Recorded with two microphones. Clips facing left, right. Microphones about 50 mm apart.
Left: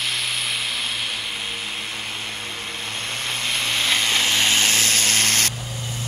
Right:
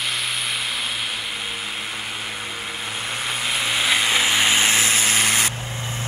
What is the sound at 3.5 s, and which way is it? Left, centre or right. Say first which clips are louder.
Vehicle: right 1 dB; centre.